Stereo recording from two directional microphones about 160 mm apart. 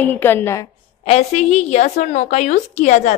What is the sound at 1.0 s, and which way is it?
A woman's voice, 40° left (ahead or behind).